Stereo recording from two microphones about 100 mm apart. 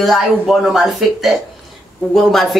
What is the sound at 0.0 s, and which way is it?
Speech, centre (ahead or behind).